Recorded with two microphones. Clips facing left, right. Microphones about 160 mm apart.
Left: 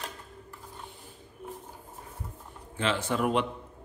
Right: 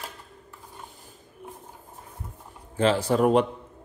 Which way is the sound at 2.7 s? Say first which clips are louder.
Right 7 dB; 40° right (ahead or behind).